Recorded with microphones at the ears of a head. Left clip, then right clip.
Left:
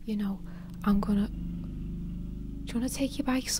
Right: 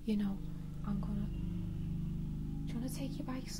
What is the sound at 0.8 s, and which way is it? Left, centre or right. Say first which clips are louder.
Speech: left 14 dB; left.